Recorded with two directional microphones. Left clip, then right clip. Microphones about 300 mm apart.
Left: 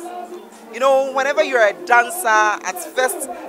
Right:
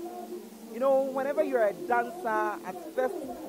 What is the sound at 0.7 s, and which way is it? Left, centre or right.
Speech, centre.